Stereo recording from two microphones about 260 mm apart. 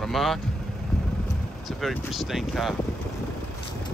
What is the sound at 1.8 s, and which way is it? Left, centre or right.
Speech, centre.